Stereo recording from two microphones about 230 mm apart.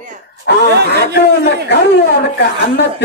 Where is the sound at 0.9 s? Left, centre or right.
Left.